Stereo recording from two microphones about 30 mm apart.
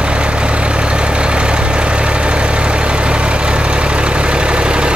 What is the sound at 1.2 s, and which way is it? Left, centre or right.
Vehicle, right.